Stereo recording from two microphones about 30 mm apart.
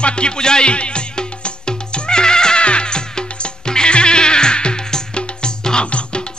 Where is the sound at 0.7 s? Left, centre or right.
Left.